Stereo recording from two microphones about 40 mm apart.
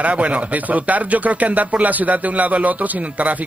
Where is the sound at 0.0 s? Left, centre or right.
Right.